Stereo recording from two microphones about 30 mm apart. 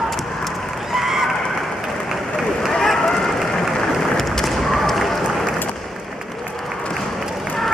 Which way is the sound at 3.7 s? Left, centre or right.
Centre.